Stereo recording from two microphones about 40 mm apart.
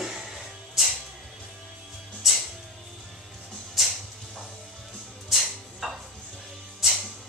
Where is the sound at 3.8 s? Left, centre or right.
Centre.